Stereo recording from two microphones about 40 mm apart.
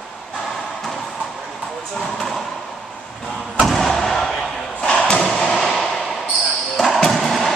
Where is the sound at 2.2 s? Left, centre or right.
Centre.